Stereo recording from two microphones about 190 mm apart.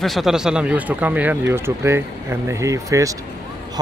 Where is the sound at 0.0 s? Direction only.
Centre (ahead or behind).